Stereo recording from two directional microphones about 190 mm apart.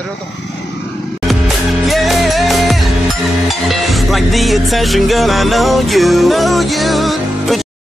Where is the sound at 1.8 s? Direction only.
Centre (ahead or behind).